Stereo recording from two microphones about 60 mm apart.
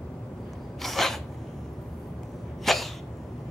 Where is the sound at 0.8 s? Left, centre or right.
Centre.